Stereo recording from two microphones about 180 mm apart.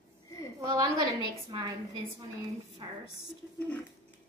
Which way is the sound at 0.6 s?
20° right (ahead or behind).